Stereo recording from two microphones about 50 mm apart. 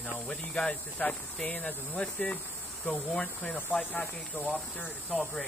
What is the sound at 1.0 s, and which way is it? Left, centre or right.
Speech, left.